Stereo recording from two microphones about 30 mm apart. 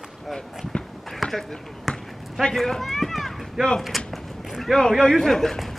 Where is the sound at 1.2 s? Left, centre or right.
Centre.